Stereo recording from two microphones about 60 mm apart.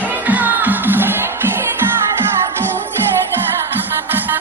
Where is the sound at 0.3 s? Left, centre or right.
Right.